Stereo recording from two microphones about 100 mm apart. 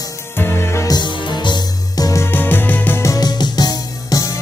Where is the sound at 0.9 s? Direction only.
50° left (ahead or behind).